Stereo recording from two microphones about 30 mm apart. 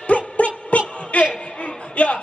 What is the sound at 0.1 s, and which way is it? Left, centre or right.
Music, left.